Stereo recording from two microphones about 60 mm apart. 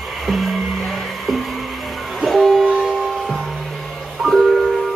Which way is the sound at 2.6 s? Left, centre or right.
Centre.